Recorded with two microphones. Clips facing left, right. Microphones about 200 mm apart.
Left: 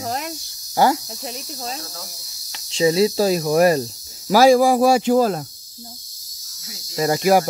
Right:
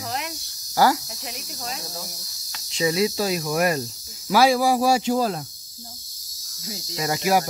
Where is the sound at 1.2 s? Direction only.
35° left (ahead or behind); by 5.4 s 50° left (ahead or behind).